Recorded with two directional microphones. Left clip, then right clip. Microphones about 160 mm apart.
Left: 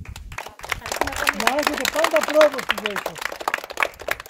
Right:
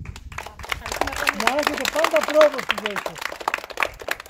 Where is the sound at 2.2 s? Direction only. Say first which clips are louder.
Right 1 dB; 75° left (ahead or behind).